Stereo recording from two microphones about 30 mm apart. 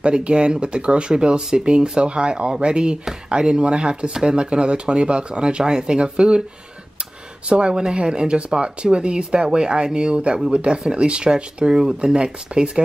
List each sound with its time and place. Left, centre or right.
0.0 s speech: right
4.1 s speech: centre
4.4 s speech: right
7.4 s speech: right